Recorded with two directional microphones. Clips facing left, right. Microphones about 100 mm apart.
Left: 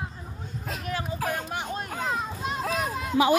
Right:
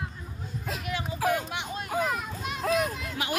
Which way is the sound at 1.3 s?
40° left (ahead or behind).